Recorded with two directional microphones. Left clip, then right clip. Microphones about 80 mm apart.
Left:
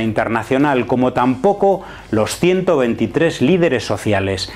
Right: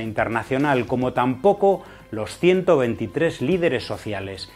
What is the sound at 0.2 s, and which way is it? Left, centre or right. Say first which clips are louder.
Speech: left 5 dB; left.